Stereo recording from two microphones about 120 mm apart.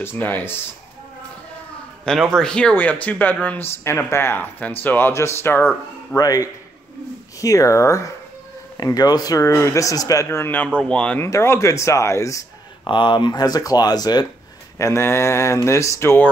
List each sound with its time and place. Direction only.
0.0 s speech: 15° left (ahead or behind)
2.0 s speech: 5° left (ahead or behind); by 5.7 s 20° left (ahead or behind)
6.1 s speech: 30° left (ahead or behind); by 11.2 s 10° left (ahead or behind)
11.2 s speech: 25° left (ahead or behind)
12.8 s speech: 40° left (ahead or behind)
14.8 s speech: 25° left (ahead or behind)